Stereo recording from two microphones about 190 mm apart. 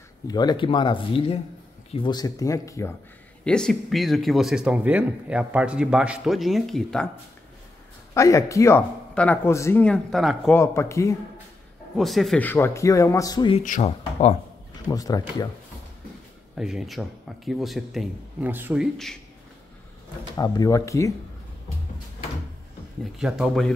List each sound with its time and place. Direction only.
0.3 s speech: 20° left (ahead or behind)
3.4 s speech: 5° left (ahead or behind)
8.1 s speech: 15° left (ahead or behind)
10.5 s speech: 15° left (ahead or behind)
12.0 s speech: centre (ahead or behind); by 13.6 s 20° left (ahead or behind)
13.6 s speech: 40° left (ahead or behind)
14.9 s speech: 20° left (ahead or behind)
16.5 s speech: centre (ahead or behind)
20.3 s speech: 20° left (ahead or behind)
23.1 s speech: centre (ahead or behind)